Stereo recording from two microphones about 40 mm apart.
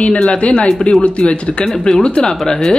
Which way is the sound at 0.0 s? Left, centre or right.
Left.